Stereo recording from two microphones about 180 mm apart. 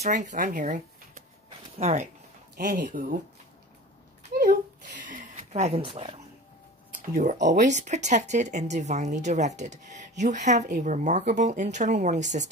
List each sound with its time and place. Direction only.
0.0 s speech: 45° right (ahead or behind)
1.8 s speech: 35° right (ahead or behind)
2.5 s speech: 55° right (ahead or behind)
4.3 s a sound: 50° right (ahead or behind); by 6.2 s 30° right (ahead or behind)
6.9 s a sound: 45° right (ahead or behind)
7.6 s speech: 40° right (ahead or behind)